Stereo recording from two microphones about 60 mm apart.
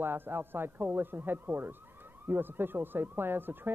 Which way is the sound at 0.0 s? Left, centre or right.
Right.